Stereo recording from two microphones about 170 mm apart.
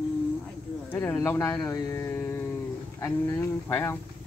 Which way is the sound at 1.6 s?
20° left (ahead or behind).